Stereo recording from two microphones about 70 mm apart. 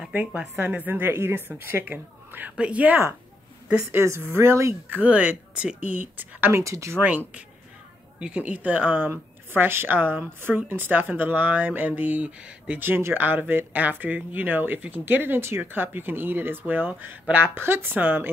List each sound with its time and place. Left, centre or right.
0.1 s speech: centre
2.5 s speech: centre
3.9 s speech: right
4.8 s speech: right
6.5 s speech: right
7.0 s speech: right
12.8 s speech: right